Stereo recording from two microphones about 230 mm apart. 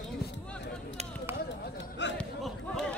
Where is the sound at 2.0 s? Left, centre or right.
Left.